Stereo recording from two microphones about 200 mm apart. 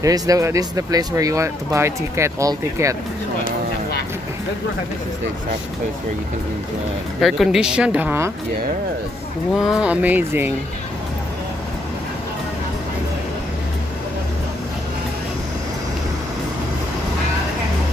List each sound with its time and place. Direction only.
0.0 s speech: 15° right (ahead or behind)
7.2 s speech: centre (ahead or behind)
9.6 s speech: 5° right (ahead or behind)